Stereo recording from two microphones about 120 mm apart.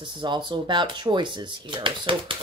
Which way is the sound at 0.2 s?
40° right (ahead or behind).